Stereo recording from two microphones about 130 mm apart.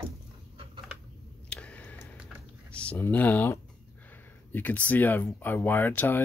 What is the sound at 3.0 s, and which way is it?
Speech, 15° left (ahead or behind).